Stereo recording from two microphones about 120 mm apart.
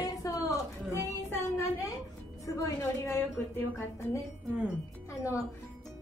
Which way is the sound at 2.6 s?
25° left (ahead or behind).